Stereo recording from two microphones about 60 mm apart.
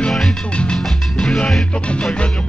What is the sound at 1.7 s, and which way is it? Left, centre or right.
Music, centre.